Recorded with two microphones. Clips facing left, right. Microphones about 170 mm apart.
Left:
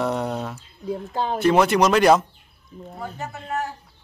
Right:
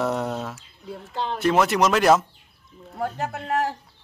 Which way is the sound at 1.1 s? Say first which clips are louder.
Left 2 dB; 45° left (ahead or behind).